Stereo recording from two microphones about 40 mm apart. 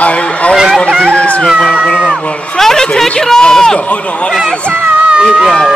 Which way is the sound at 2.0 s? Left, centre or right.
Centre.